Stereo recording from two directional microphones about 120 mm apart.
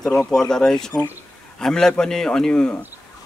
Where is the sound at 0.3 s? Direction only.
5° left (ahead or behind).